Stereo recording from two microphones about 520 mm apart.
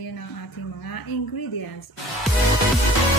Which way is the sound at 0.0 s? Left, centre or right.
Left.